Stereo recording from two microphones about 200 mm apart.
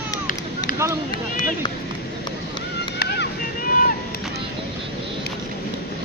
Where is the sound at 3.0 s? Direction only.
50° left (ahead or behind).